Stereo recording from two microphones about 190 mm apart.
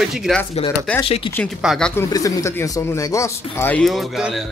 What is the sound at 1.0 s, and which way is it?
Speech, 25° left (ahead or behind).